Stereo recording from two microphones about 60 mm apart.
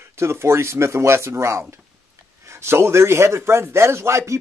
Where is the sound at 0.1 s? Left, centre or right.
Right.